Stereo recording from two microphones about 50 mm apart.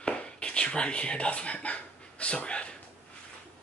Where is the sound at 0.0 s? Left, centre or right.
Left.